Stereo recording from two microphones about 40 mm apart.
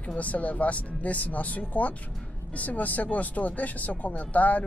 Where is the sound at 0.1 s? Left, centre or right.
Left.